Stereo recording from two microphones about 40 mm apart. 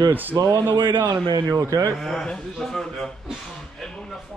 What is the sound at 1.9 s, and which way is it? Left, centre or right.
Speech, centre.